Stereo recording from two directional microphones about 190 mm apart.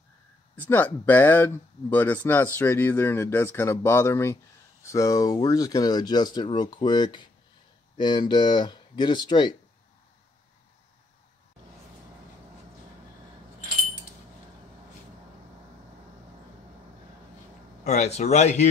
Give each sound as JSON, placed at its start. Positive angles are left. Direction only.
{"t": 0.6, "sound": "speech", "side_deg": 10}
{"t": 17.8, "sound": "speech", "side_deg": 35}